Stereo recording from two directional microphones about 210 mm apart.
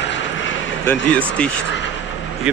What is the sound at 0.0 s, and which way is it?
Vehicle, 60° left (ahead or behind).